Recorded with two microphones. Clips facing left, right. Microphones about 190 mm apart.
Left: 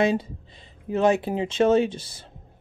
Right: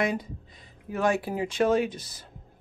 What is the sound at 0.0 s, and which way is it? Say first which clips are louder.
Speech: left 6 dB; 25° left (ahead or behind).